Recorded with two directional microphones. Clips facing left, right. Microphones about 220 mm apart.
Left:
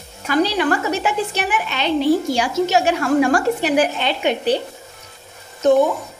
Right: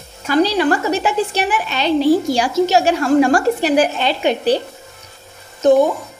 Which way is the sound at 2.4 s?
35° right (ahead or behind).